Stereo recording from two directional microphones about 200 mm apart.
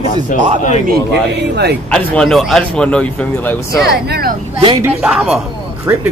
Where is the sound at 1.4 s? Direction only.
55° right (ahead or behind).